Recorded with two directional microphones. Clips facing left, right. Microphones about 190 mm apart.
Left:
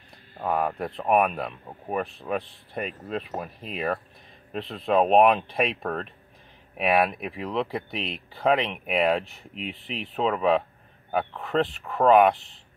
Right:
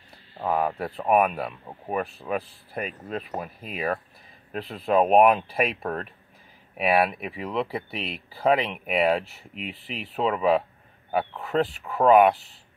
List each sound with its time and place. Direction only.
0.4 s speech: centre (ahead or behind)